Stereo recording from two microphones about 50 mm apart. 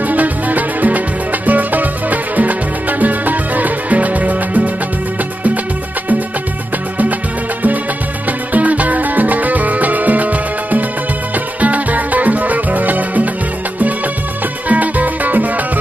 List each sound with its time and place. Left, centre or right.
0.0 s music: right
8.3 s music: right
14.7 s music: right